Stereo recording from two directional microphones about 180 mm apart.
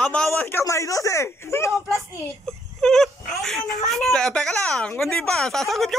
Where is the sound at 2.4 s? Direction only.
Centre (ahead or behind).